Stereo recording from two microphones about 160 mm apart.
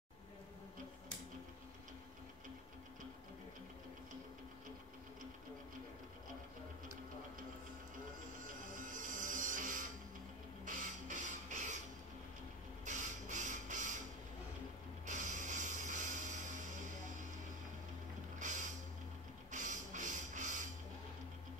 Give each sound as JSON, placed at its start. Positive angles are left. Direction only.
{"t": 8.4, "sound": "music", "side_deg": -55}
{"t": 10.6, "sound": "printer", "side_deg": -55}
{"t": 12.8, "sound": "printer", "side_deg": -50}
{"t": 15.0, "sound": "music", "side_deg": -50}
{"t": 18.4, "sound": "a sound", "side_deg": -50}
{"t": 19.5, "sound": "printer", "side_deg": -50}